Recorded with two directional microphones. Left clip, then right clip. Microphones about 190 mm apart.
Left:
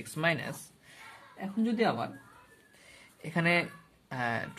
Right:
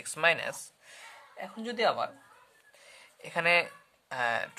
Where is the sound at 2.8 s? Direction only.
20° right (ahead or behind).